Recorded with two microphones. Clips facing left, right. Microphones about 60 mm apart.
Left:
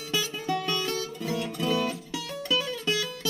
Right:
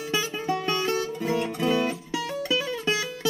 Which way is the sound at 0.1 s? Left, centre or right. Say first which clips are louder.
Right 1 dB; right.